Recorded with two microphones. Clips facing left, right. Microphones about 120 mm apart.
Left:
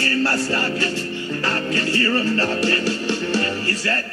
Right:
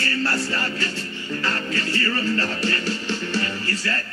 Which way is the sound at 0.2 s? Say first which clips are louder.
Left 4 dB; 30° left (ahead or behind).